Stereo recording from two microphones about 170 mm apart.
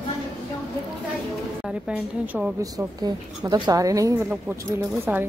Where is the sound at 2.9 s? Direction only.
25° right (ahead or behind).